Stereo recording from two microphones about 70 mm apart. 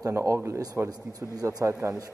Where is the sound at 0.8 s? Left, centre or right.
Right.